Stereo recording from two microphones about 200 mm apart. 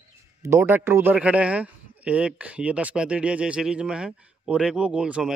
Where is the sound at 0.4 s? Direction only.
10° right (ahead or behind).